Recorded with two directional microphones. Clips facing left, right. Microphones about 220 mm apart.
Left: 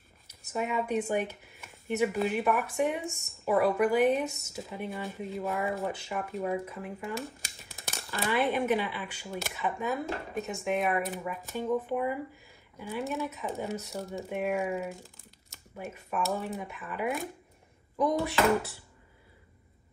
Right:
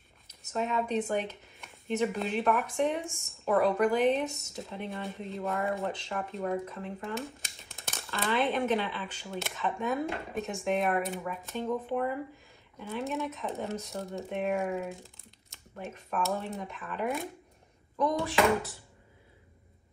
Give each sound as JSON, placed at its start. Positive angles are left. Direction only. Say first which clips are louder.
{"t": 0.3, "sound": "speech", "louder": "even", "side_deg": 10}